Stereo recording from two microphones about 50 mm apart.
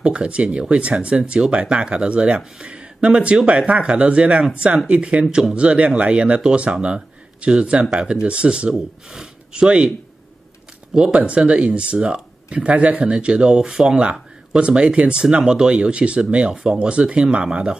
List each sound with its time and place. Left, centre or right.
0.0 s speech: right
8.7 s speech: centre
9.5 s speech: centre